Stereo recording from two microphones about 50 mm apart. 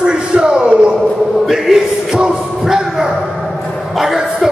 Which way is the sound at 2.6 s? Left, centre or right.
Centre.